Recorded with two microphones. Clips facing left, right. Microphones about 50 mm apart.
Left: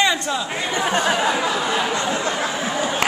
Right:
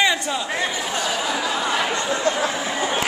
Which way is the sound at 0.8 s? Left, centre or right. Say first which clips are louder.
Left 5 dB; left.